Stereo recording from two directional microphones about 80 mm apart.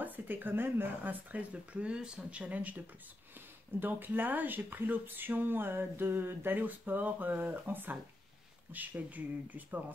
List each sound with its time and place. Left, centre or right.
0.0 s speech: right
3.8 s speech: right